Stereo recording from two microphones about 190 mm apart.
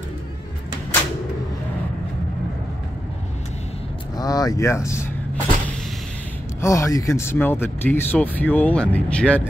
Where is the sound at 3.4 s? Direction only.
35° left (ahead or behind).